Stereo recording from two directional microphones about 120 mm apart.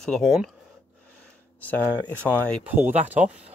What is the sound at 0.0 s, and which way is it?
Speech, 5° left (ahead or behind).